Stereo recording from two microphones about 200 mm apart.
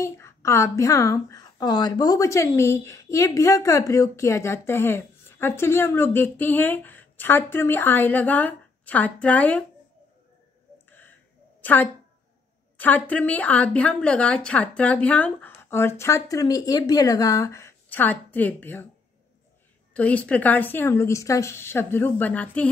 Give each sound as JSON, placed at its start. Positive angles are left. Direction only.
{"t": 0.0, "sound": "a woman's voice", "side_deg": 15}
{"t": 10.9, "sound": "a sound", "side_deg": 10}
{"t": 11.6, "sound": "a woman's voice", "side_deg": 10}
{"t": 19.9, "sound": "a woman's voice", "side_deg": 5}